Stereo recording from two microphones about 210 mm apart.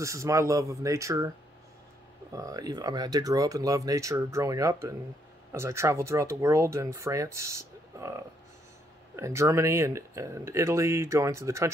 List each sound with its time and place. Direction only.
0.0 s speech: 15° right (ahead or behind)
2.3 s speech: 15° right (ahead or behind)